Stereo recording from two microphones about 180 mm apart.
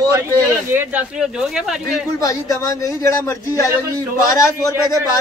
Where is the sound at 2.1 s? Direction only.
20° left (ahead or behind).